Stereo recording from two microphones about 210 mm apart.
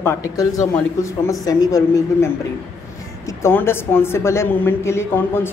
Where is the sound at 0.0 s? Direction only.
15° left (ahead or behind).